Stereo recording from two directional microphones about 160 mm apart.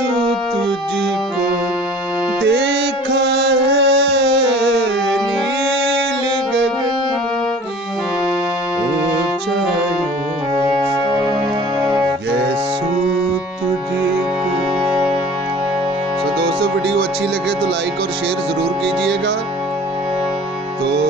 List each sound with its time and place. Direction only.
2.4 s carnatic music: 90° right